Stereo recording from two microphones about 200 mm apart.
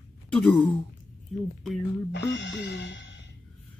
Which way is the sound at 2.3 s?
60° left (ahead or behind).